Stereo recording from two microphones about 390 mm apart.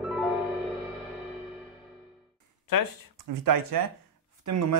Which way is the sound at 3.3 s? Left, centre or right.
Right.